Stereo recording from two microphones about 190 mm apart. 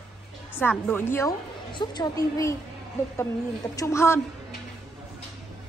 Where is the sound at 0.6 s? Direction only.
10° left (ahead or behind).